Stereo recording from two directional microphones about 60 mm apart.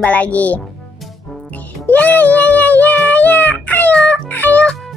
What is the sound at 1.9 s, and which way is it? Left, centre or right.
Music, left.